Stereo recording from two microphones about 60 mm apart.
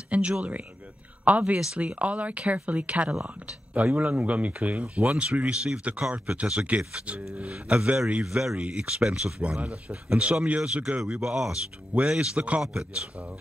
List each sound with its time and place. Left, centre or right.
0.1 s speech: centre
10.6 s speech: centre